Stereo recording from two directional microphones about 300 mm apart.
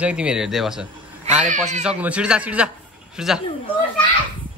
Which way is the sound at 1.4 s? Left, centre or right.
Right.